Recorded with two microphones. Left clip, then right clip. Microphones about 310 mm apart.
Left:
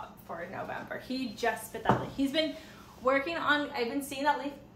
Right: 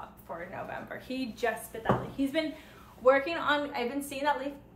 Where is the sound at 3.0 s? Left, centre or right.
Centre.